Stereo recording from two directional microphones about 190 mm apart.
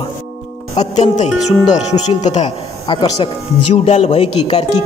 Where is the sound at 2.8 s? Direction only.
25° left (ahead or behind).